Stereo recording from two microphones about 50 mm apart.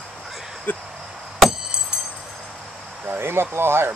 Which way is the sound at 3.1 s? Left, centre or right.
Right.